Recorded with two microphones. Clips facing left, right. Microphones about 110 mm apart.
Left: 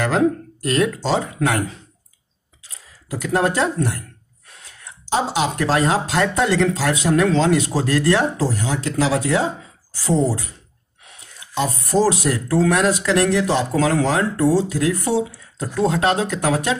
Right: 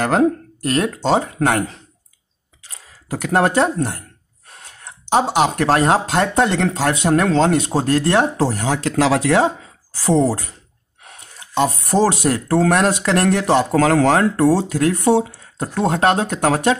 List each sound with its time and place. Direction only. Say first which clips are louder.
0.0 s speech: right 2 dB; 45° right (ahead or behind)
2.7 s speech: right 3 dB; 60° right (ahead or behind)
8.4 s speech: right 3 dB; 65° right (ahead or behind)
11.0 s speech: right 4 dB; 50° right (ahead or behind)